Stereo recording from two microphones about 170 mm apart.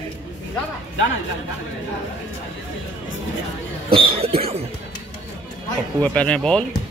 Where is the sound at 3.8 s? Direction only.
30° right (ahead or behind).